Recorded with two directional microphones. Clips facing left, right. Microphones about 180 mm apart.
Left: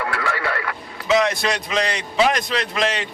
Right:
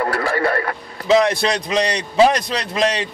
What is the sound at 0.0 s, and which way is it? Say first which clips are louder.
A man's voice: right 5 dB; 35° right (ahead or behind).